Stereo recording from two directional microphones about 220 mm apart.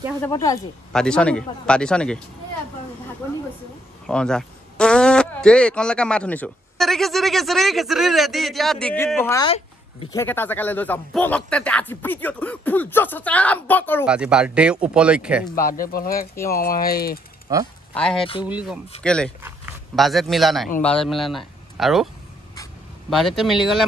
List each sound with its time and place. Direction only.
0.2 s a man's voice: 15° left (ahead or behind)
0.9 s speech: 5° left (ahead or behind)
4.1 s a man's voice: 5° left (ahead or behind)
14.0 s speech: 5° right (ahead or behind)
15.5 s speech: 40° left (ahead or behind)
17.5 s speech: 15° right (ahead or behind)
17.9 s speech: 5° left (ahead or behind)